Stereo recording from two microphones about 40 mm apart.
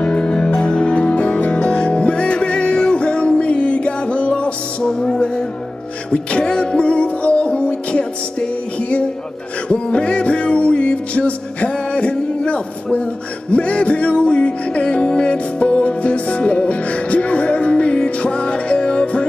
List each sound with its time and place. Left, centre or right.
0.0 s music: left
9.7 s music: left